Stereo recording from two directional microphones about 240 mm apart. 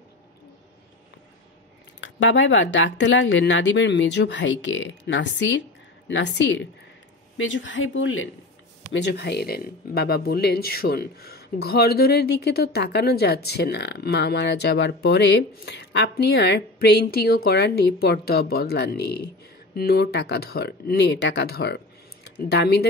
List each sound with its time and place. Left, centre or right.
2.0 s speech: left
8.9 s speech: left